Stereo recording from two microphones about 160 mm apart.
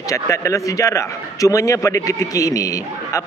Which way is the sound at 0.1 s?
20° left (ahead or behind).